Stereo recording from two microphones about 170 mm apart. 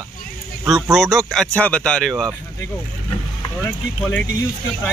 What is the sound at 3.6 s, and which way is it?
Speech, 10° left (ahead or behind).